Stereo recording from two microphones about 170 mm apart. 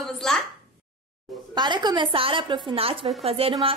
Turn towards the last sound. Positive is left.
turn(degrees=-30)  # may be behind; listen again after turning